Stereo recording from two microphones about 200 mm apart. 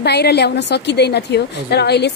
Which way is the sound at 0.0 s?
55° left (ahead or behind).